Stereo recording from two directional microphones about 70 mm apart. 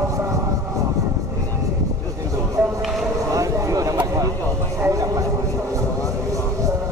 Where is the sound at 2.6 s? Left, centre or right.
Right.